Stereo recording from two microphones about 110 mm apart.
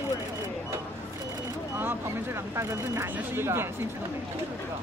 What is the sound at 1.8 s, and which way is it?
Speech, 20° right (ahead or behind).